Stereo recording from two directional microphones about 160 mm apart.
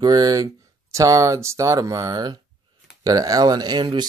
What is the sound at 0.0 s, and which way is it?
Speech, 25° right (ahead or behind).